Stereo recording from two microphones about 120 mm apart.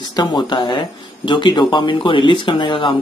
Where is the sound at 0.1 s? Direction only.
35° left (ahead or behind).